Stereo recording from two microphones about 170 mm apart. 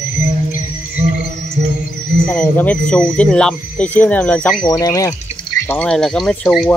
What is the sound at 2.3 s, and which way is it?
Speech, 10° left (ahead or behind).